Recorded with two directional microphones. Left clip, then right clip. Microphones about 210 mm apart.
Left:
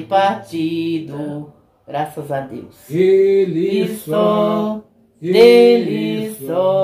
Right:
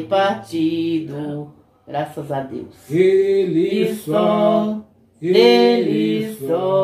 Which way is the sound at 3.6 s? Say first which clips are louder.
Left 1 dB; 20° left (ahead or behind).